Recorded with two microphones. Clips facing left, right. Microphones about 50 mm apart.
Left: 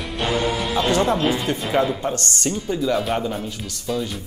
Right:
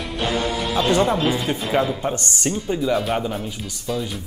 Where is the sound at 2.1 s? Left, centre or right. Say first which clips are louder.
Even; centre.